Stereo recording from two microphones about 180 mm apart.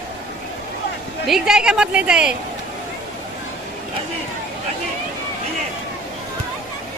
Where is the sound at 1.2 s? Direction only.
5° right (ahead or behind).